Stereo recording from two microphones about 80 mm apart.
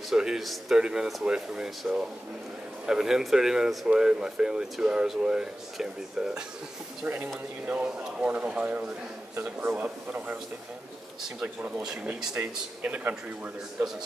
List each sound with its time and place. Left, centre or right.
0.1 s a man's voice: centre
7.6 s a man's voice: centre
11.4 s speech: centre
11.8 s speech: centre
12.4 s a man's voice: right